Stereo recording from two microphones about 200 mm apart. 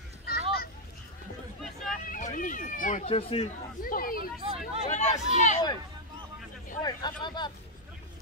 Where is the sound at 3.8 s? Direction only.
45° left (ahead or behind).